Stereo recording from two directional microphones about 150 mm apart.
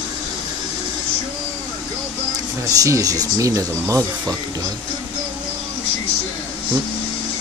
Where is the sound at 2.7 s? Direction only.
25° right (ahead or behind).